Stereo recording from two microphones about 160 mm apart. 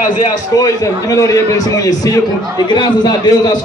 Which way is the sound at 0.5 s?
20° left (ahead or behind).